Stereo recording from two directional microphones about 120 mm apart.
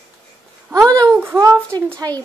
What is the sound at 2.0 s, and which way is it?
Speech, 30° right (ahead or behind).